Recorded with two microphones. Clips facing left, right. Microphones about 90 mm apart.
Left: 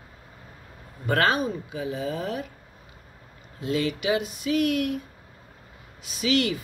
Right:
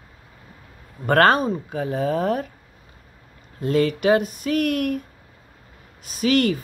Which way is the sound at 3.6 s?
50° right (ahead or behind).